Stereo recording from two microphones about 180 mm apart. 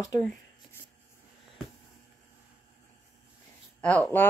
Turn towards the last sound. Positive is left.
turn(degrees=5)  # may be behind; listen again after turning